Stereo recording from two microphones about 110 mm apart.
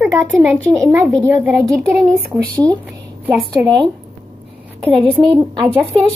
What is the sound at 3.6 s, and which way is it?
Speech, 45° right (ahead or behind).